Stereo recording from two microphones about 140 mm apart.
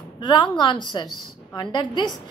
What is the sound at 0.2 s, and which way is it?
A woman's voice, 35° left (ahead or behind).